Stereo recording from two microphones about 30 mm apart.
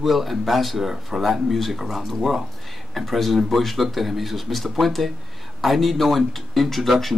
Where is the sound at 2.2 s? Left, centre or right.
Centre.